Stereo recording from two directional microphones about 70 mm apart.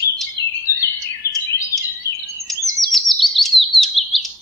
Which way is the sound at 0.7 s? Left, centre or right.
Right.